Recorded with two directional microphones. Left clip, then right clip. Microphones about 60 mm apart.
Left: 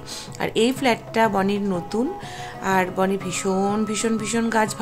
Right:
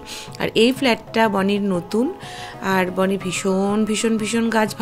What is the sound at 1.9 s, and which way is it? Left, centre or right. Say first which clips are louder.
Speech: right 4 dB; right.